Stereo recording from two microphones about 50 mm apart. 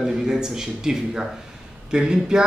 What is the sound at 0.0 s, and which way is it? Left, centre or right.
A man's voice, centre.